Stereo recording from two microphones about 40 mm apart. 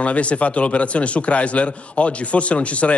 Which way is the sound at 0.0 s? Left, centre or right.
Left.